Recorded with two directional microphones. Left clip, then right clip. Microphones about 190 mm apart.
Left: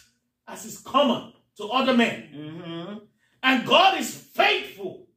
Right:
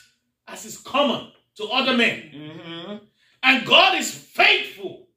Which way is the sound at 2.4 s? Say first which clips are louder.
Right 1 dB; 50° right (ahead or behind).